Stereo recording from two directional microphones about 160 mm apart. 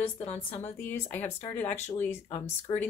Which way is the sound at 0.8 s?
10° left (ahead or behind).